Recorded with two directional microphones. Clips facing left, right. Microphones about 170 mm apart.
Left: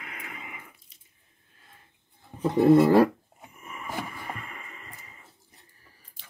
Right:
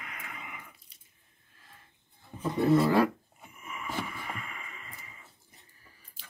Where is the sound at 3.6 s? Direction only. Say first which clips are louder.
Left 1 dB; 35° left (ahead or behind).